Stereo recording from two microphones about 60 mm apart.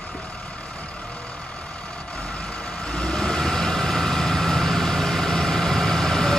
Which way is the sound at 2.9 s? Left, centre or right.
Centre.